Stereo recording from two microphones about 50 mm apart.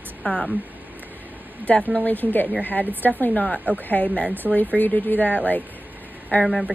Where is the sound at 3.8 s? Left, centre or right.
Left.